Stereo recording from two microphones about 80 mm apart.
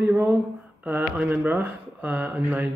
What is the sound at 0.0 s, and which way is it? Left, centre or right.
Speech, right.